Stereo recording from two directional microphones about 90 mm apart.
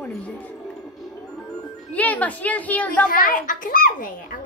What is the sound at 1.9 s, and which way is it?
A woman's voice, 15° left (ahead or behind).